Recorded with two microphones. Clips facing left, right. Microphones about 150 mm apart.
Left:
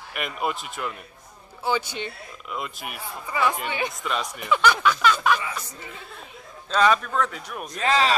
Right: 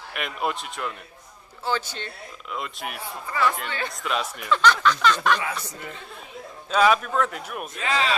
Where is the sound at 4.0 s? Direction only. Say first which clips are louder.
Right 1 dB; centre (ahead or behind).